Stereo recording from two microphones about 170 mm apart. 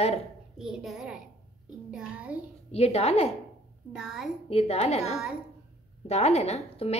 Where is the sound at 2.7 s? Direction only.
35° left (ahead or behind).